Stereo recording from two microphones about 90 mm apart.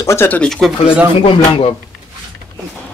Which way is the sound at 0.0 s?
30° left (ahead or behind).